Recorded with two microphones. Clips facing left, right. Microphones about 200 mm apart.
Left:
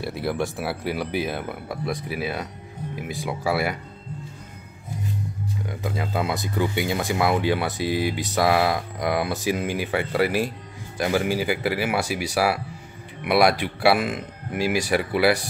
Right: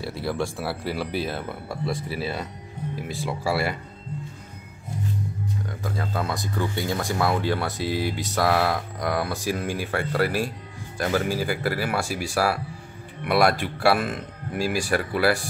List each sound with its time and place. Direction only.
0.1 s speech: 20° left (ahead or behind)
3.3 s speech: centre (ahead or behind)
5.7 s speech: 15° left (ahead or behind)
7.0 s speech: 5° left (ahead or behind)
7.8 s speech: 55° left (ahead or behind)
8.1 s speech: 5° left (ahead or behind)